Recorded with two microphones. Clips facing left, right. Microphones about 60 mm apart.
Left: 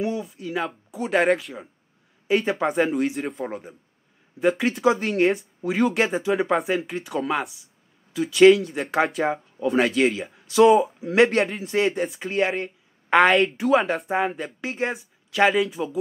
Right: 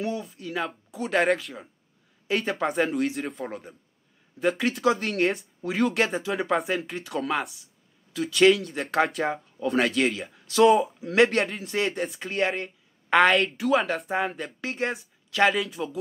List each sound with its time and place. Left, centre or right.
0.0 s speech: centre
1.2 s speech: centre
4.4 s speech: centre
10.3 s speech: centre
11.2 s speech: centre